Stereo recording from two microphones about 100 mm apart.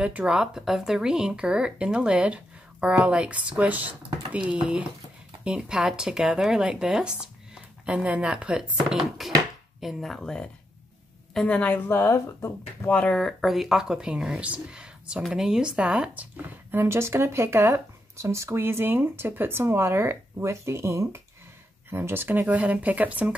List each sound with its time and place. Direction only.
0.0 s a woman's voice: 10° right (ahead or behind)